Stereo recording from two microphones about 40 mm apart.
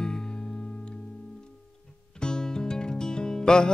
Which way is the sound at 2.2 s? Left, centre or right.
Centre.